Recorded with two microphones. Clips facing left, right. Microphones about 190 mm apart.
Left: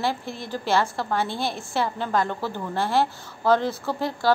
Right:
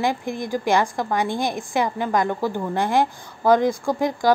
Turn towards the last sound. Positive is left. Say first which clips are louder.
# right 4 dB
turn(degrees=-15)  # may be behind; listen again after turning